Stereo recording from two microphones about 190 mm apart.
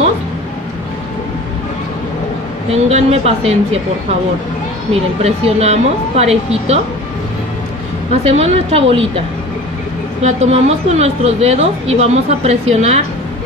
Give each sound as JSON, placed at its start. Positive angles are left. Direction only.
{"t": 2.7, "sound": "speech", "side_deg": -35}
{"t": 5.2, "sound": "speech", "side_deg": -35}
{"t": 8.3, "sound": "speech", "side_deg": -30}
{"t": 10.2, "sound": "speech", "side_deg": -35}